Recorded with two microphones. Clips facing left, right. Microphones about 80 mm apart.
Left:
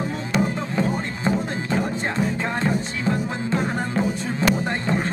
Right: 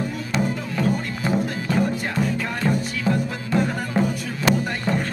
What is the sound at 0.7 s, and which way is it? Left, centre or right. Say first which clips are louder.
Music: right 1 dB; left.